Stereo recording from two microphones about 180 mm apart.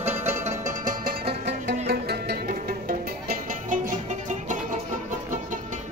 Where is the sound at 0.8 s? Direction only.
55° right (ahead or behind).